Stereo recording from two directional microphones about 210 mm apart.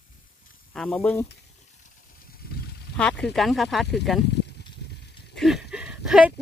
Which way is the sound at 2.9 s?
5° left (ahead or behind).